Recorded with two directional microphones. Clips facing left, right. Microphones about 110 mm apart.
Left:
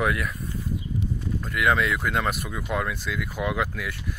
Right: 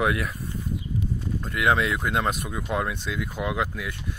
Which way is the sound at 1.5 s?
30° right (ahead or behind).